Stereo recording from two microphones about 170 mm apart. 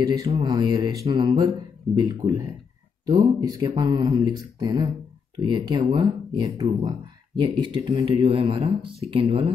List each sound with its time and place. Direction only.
0.3 s speech: 25° right (ahead or behind)